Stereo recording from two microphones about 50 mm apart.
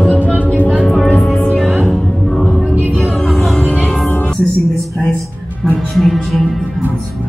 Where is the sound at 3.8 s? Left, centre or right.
Centre.